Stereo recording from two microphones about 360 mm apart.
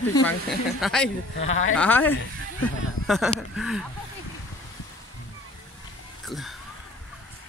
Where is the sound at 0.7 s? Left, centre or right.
Centre.